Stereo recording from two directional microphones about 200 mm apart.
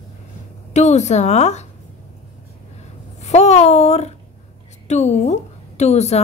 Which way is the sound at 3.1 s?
35° left (ahead or behind).